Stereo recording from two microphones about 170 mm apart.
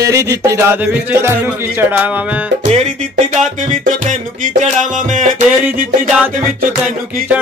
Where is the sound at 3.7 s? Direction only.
50° right (ahead or behind).